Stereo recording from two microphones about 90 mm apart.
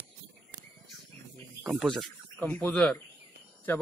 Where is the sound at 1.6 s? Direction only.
5° right (ahead or behind).